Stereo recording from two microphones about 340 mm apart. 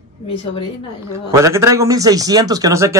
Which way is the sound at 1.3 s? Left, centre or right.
Centre.